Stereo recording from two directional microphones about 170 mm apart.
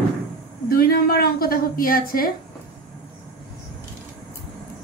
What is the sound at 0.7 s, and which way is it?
A woman's voice, 60° left (ahead or behind).